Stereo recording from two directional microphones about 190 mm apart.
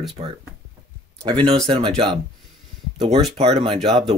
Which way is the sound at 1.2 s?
25° right (ahead or behind).